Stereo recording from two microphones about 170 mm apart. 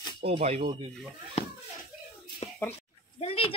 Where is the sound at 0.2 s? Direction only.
35° right (ahead or behind).